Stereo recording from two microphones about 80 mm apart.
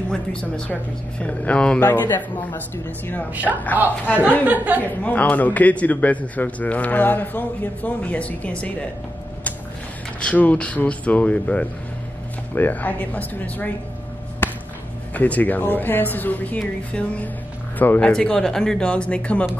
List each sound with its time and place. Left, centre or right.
0.1 s a man's voice: centre
3.5 s a woman's voice: centre
4.5 s speech: right
4.8 s a man's voice: centre
10.2 s a man's voice: centre
14.4 s a sound: left
15.1 s a man's voice: centre
18.1 s speech: centre